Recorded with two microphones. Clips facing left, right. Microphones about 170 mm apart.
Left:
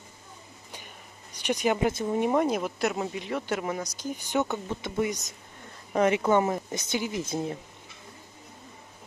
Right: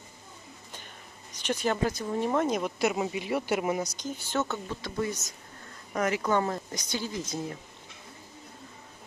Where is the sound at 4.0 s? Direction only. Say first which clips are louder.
Left 3 dB; 15° left (ahead or behind).